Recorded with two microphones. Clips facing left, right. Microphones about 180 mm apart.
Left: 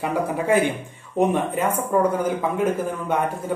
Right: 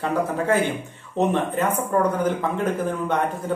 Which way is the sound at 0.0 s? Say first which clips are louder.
Even; 10° left (ahead or behind).